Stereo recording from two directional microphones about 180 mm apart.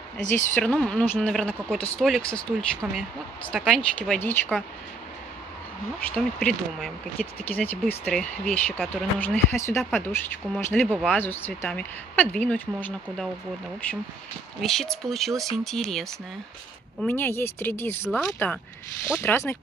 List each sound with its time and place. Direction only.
0.2 s speech: 45° left (ahead or behind)
0.6 s speech: 5° left (ahead or behind)
5.9 s speech: 10° left (ahead or behind)